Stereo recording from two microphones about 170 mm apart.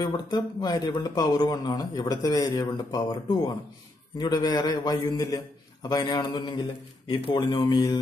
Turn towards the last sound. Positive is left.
turn(degrees=20)  # may be behind; listen again after turning